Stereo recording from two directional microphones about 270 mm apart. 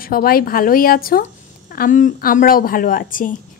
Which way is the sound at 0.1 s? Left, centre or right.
Left.